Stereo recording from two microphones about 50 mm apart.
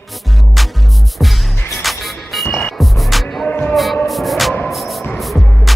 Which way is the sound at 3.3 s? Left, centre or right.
Left.